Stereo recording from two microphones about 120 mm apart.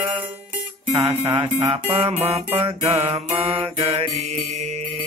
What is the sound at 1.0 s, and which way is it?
Music, 50° right (ahead or behind).